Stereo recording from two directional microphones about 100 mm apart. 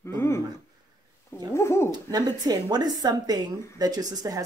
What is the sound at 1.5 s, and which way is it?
Speech, 30° left (ahead or behind).